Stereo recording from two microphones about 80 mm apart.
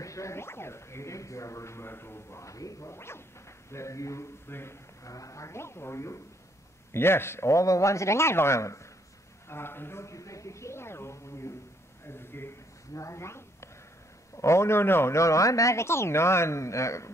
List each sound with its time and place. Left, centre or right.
0.0 s speech: left
5.0 s speech: left